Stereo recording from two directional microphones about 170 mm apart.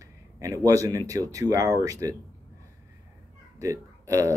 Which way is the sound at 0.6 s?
20° right (ahead or behind).